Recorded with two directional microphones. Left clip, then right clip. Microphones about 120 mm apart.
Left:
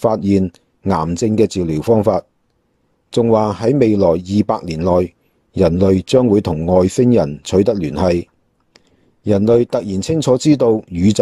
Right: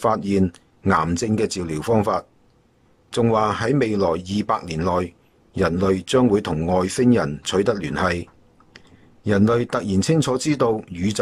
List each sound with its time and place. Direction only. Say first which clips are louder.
0.0 s speech: left 5 dB; 30° left (ahead or behind)